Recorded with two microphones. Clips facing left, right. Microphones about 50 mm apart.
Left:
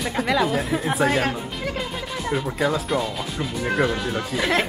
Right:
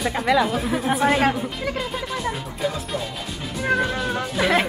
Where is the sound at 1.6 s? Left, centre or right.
Centre.